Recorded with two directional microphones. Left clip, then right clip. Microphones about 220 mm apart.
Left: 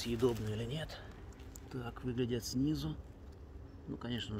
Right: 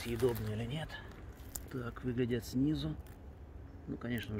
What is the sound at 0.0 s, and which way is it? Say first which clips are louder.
Speech: even; 20° left (ahead or behind).